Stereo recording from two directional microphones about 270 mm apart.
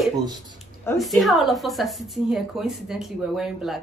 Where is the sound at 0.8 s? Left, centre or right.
Centre.